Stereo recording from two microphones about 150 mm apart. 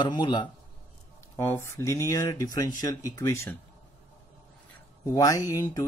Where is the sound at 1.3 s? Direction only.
15° left (ahead or behind).